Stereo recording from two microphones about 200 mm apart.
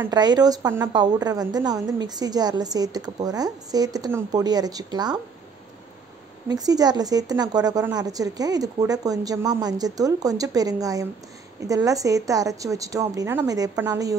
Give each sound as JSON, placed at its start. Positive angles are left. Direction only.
{"t": 0.0, "sound": "a woman's voice", "side_deg": -20}
{"t": 6.5, "sound": "a woman's voice", "side_deg": -20}